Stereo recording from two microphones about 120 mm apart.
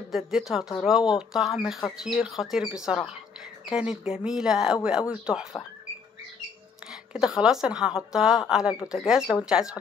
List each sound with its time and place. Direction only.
0.1 s speech: 5° right (ahead or behind)
7.2 s speech: 5° right (ahead or behind)